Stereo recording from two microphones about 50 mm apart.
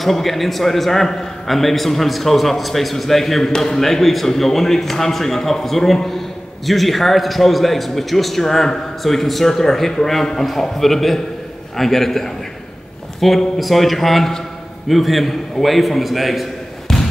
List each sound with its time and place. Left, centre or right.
0.0 s a man's voice: centre